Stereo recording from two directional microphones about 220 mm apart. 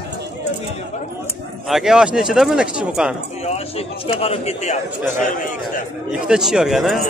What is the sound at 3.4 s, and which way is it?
A man's voice, 30° left (ahead or behind).